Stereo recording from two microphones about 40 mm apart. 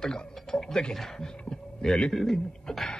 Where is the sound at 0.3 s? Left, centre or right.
Centre.